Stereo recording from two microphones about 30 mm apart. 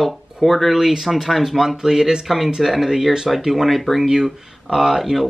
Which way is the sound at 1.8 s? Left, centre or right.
Right.